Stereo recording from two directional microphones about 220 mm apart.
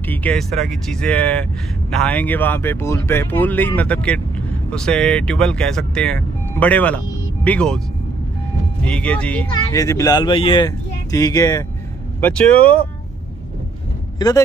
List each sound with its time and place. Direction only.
0.0 s speech: 5° left (ahead or behind)
8.8 s speech: 5° left (ahead or behind)
12.2 s speech: 5° left (ahead or behind)
14.1 s speech: 15° left (ahead or behind)